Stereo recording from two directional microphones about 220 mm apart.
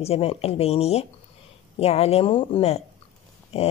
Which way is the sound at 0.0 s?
25° left (ahead or behind).